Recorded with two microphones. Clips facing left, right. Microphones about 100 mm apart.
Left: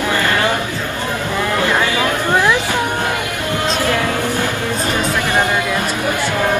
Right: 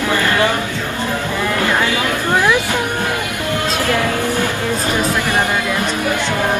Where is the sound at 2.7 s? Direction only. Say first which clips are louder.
Left 1 dB; 20° left (ahead or behind).